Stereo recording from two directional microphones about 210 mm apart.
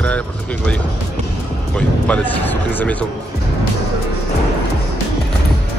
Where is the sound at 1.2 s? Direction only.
35° right (ahead or behind).